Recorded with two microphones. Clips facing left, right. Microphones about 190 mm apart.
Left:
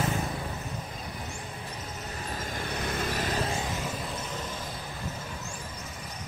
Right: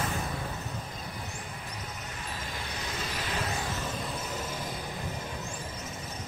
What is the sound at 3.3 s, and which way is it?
Vehicle, 30° left (ahead or behind).